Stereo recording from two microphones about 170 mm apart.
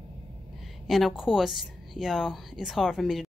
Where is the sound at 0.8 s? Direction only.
Centre (ahead or behind).